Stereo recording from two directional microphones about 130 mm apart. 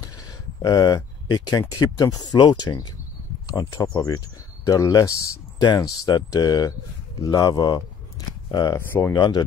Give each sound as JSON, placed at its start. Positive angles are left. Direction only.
{"t": 0.6, "sound": "speech", "side_deg": 30}
{"t": 8.7, "sound": "speech", "side_deg": 20}
{"t": 9.1, "sound": "speech", "side_deg": 35}